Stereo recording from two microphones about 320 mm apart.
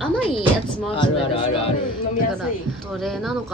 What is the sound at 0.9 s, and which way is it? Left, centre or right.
Speech, centre.